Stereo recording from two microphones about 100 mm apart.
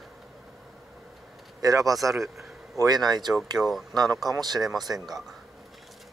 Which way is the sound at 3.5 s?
Centre (ahead or behind).